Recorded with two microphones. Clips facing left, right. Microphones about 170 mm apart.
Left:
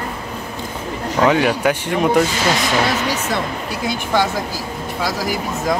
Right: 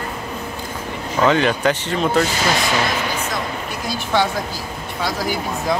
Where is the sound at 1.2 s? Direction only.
10° left (ahead or behind).